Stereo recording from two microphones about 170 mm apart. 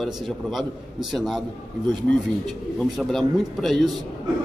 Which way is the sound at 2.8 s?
Centre (ahead or behind).